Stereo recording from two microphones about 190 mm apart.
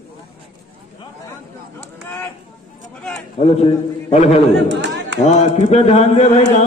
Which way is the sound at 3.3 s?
35° left (ahead or behind).